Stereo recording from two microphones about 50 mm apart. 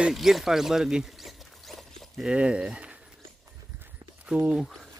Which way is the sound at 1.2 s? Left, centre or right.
Centre.